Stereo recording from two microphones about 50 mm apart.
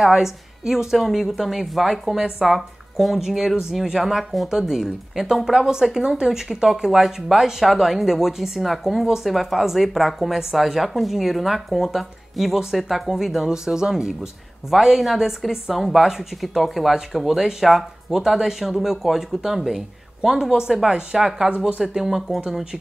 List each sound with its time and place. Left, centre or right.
0.0 s speech: centre
21.8 s speech: centre